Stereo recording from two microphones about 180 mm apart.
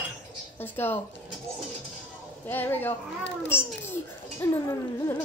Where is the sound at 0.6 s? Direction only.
10° left (ahead or behind).